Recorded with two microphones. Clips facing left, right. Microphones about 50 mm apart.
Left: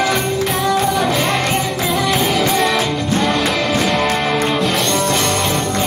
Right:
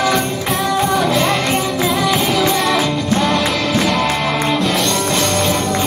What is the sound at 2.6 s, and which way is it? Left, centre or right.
Music, centre.